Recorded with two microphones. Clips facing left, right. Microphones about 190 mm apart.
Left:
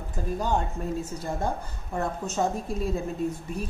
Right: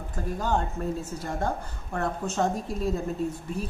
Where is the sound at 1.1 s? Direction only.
15° left (ahead or behind).